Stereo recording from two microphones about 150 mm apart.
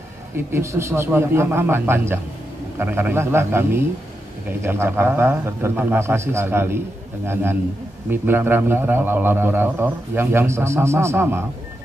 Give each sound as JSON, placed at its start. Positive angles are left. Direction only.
{"t": 0.5, "sound": "a man's voice", "side_deg": -15}
{"t": 8.1, "sound": "a man's voice", "side_deg": -15}